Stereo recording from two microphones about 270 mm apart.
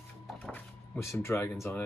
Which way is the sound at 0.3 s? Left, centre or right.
Centre.